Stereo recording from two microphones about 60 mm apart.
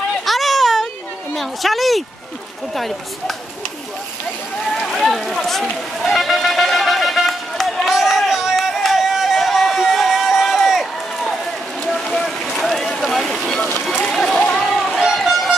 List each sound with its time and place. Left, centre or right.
0.2 s a sound: centre
1.3 s a woman's voice: centre
4.7 s run: centre
11.8 s a sound: centre
13.6 s run: left
13.9 s run: centre
15.0 s music: centre